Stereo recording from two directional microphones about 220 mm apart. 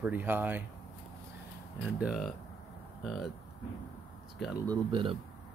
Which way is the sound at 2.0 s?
Centre (ahead or behind).